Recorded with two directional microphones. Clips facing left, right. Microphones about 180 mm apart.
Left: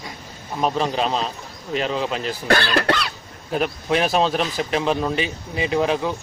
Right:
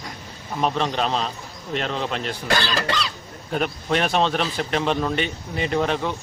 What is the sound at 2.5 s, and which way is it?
Speech, 60° left (ahead or behind).